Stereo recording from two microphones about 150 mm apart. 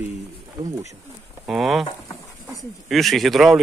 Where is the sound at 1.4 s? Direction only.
5° right (ahead or behind).